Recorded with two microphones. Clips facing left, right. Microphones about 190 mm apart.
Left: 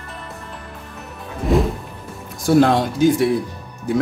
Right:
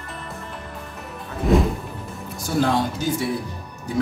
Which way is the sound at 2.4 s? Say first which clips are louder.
Left 7 dB; 75° left (ahead or behind).